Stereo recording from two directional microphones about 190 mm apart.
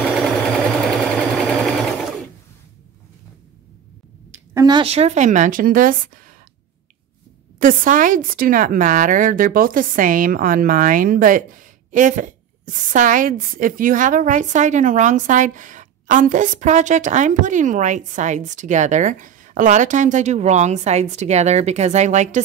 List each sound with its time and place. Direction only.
0.0 s sewing machine: centre (ahead or behind)
4.6 s a woman's voice: 25° right (ahead or behind); by 6.3 s 45° right (ahead or behind)
7.5 s a woman's voice: 45° right (ahead or behind)